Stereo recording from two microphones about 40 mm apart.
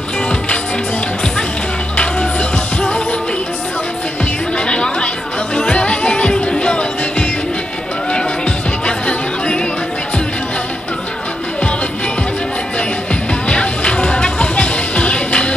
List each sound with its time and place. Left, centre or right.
2.0 s music: left
4.6 s music: left
12.7 s music: left